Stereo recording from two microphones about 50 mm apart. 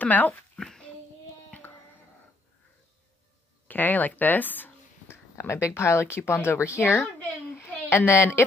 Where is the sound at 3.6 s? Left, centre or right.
Left.